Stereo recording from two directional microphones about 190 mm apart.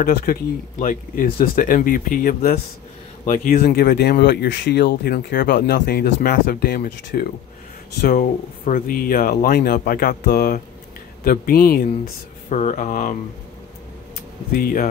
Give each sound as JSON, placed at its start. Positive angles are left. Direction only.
{"t": 0.0, "sound": "speech", "side_deg": 50}
{"t": 12.4, "sound": "speech", "side_deg": 40}
{"t": 14.5, "sound": "speech", "side_deg": 45}